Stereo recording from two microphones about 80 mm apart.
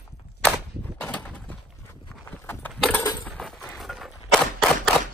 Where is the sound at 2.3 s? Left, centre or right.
Left.